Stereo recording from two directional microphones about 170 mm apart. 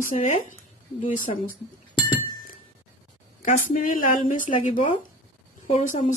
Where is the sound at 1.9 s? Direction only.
25° left (ahead or behind).